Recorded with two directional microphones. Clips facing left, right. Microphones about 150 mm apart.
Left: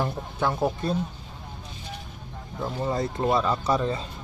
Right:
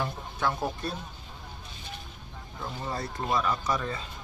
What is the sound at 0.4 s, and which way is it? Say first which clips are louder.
Speech: left 5 dB; 25° left (ahead or behind).